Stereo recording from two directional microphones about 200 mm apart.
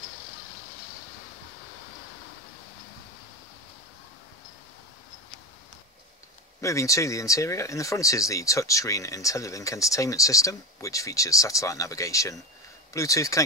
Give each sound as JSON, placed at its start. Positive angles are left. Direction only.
{"t": 6.6, "sound": "speech", "side_deg": 15}